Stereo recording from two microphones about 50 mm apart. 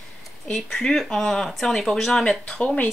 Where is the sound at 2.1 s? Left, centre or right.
Centre.